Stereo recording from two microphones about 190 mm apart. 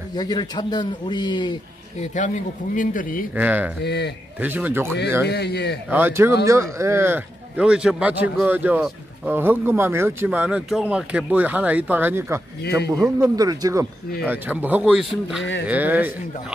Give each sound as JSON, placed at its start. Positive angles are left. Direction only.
{"t": 0.1, "sound": "speech", "side_deg": 20}
{"t": 2.0, "sound": "speech", "side_deg": 40}
{"t": 3.3, "sound": "speech", "side_deg": -10}
{"t": 3.8, "sound": "speech", "side_deg": 60}
{"t": 4.4, "sound": "speech", "side_deg": -10}
{"t": 5.2, "sound": "speech", "side_deg": 60}
{"t": 5.9, "sound": "speech", "side_deg": -10}
{"t": 14.2, "sound": "speech", "side_deg": -10}